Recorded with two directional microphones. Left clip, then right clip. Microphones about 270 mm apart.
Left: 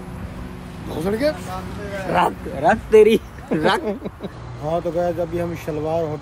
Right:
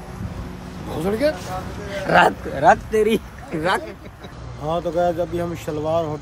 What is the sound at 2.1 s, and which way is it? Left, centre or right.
Speech, right.